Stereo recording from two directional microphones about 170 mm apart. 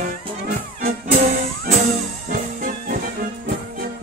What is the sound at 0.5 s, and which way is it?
Music, 60° right (ahead or behind).